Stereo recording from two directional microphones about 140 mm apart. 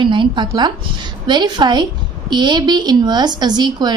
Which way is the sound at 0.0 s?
35° right (ahead or behind).